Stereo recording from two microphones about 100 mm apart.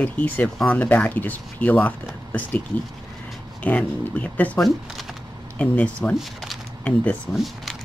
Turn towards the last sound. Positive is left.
turn(degrees=15)  # may be behind; listen again after turning